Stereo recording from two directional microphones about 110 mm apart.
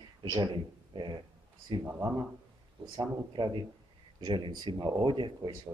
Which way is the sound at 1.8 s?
25° right (ahead or behind).